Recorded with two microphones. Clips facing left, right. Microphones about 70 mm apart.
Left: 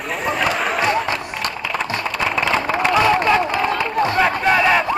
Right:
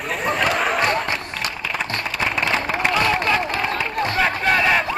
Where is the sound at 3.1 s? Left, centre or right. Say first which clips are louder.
Left 4 dB; centre.